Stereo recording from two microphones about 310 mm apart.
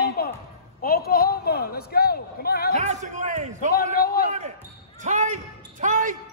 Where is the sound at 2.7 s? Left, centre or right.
Right.